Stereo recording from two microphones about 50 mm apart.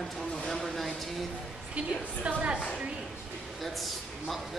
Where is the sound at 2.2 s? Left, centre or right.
Right.